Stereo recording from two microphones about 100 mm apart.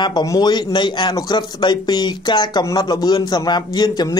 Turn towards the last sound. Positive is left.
turn(degrees=45)  # may be behind; listen again after turning